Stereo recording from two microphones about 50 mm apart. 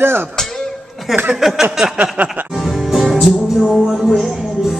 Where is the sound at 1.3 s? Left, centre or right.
Centre.